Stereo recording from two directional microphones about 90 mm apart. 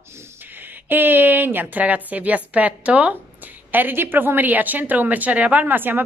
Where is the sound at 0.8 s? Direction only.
20° right (ahead or behind).